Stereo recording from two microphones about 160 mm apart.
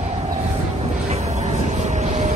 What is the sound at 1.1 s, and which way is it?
Vehicle, 45° right (ahead or behind).